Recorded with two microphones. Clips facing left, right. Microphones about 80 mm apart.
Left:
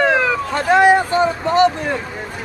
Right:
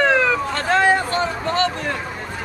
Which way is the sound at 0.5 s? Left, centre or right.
Centre.